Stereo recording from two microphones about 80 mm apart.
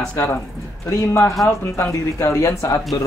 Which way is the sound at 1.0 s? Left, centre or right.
Left.